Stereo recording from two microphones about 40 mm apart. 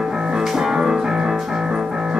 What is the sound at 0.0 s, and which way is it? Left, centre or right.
Music, centre.